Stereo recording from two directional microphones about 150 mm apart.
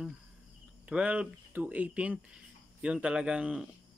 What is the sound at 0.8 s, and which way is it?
Speech, 10° right (ahead or behind).